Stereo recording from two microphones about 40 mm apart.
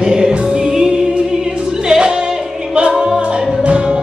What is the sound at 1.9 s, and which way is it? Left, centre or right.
Singing, centre.